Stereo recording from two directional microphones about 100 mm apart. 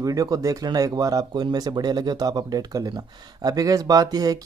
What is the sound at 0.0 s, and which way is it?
Speech, 35° right (ahead or behind).